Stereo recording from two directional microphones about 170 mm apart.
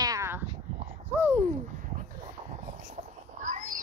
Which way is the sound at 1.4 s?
45° right (ahead or behind).